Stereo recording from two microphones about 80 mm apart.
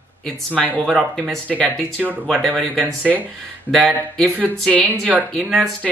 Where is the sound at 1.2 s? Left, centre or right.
Centre.